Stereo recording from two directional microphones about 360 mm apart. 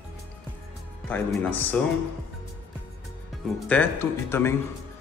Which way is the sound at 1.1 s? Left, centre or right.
Centre.